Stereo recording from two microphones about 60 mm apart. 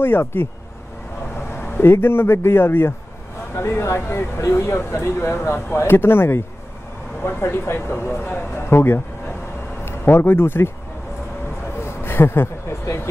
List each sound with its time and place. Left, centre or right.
0.0 s speech: left
1.5 s speech: left
11.8 s a sound: left